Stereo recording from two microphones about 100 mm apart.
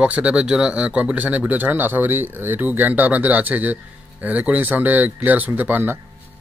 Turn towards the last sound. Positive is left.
turn(degrees=-20)  # may be behind; listen again after turning